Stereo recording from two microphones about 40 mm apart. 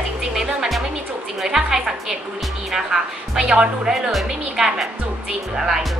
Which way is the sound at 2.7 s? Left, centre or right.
Centre.